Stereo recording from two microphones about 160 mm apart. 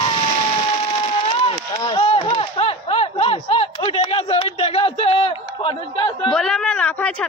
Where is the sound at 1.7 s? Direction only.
35° left (ahead or behind).